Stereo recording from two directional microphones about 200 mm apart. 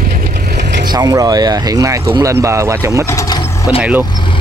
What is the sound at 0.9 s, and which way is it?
Speech, 20° right (ahead or behind).